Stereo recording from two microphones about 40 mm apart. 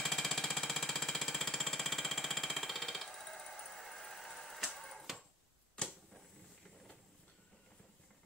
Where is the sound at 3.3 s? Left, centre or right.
Left.